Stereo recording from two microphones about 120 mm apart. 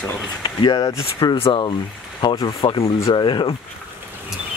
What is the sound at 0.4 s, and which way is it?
Speech, 35° left (ahead or behind).